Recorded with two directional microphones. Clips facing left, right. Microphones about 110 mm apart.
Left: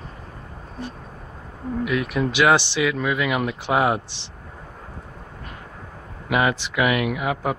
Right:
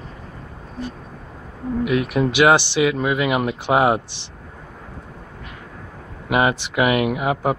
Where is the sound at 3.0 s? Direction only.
15° right (ahead or behind).